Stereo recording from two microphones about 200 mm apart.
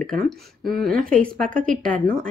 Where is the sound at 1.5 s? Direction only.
40° right (ahead or behind).